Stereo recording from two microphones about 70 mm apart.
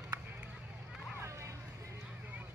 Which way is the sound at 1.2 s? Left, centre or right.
Right.